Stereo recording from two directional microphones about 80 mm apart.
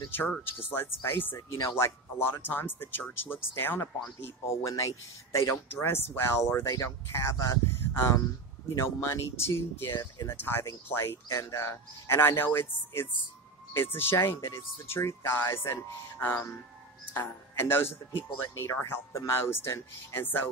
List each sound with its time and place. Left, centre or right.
0.7 s speech: left
1.6 s speech: left
2.1 s speech: left
9.9 s speech: left
10.3 s speech: left
11.2 s speech: left